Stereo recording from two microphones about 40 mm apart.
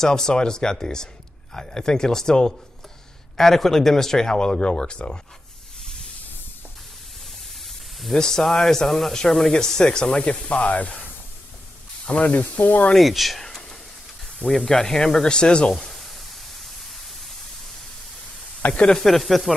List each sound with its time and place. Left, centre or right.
0.0 s speech: centre
8.1 s speech: centre
10.2 s speech: left
12.1 s speech: left
12.9 s speech: centre; by 15.7 s left
15.7 s pink noise: centre
18.9 s speech: centre